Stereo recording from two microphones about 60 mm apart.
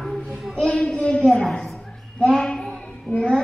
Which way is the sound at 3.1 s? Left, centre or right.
Centre.